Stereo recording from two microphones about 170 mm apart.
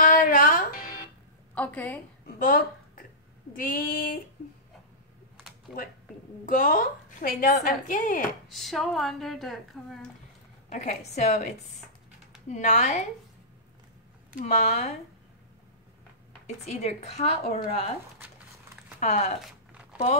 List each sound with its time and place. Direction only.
0.0 s music: 55° left (ahead or behind)
1.5 s a woman's voice: 10° left (ahead or behind)
2.2 s speech: 55° left (ahead or behind)
3.5 s female singing: 55° left (ahead or behind)
5.7 s speech: 5° right (ahead or behind)
6.4 s a woman's voice: 50° left (ahead or behind)
8.5 s speech: centre (ahead or behind)
10.7 s a woman's voice: 45° left (ahead or behind)
14.4 s speech: 40° left (ahead or behind)
16.4 s speech: 40° left (ahead or behind)
18.9 s a woman's voice: 40° left (ahead or behind)